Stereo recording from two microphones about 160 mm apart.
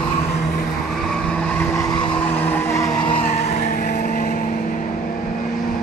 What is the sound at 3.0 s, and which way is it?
Vehicle, 35° left (ahead or behind).